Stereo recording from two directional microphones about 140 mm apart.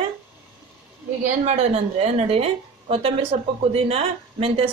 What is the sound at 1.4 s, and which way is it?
A woman's voice, 50° right (ahead or behind).